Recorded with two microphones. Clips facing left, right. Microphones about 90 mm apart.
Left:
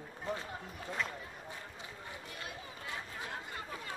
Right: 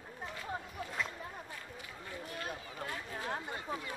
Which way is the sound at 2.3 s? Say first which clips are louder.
Right 4 dB; 40° right (ahead or behind).